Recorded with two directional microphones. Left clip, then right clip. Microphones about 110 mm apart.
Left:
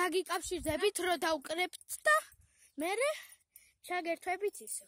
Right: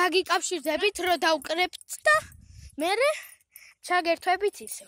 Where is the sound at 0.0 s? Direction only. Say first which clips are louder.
Right 10 dB; 10° left (ahead or behind).